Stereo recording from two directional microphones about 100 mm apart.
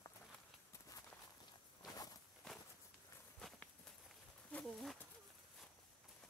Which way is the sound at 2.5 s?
5° left (ahead or behind).